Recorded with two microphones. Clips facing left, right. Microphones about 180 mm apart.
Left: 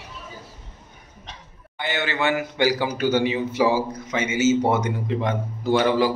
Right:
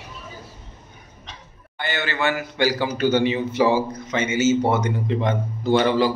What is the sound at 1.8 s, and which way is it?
A man's voice, 20° left (ahead or behind).